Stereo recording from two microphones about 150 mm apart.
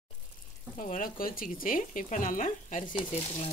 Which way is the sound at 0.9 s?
70° left (ahead or behind).